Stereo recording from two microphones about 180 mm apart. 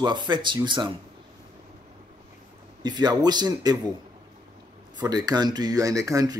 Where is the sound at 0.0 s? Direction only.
25° right (ahead or behind).